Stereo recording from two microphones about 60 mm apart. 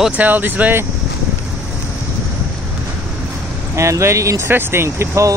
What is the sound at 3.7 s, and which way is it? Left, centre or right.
Speech, right.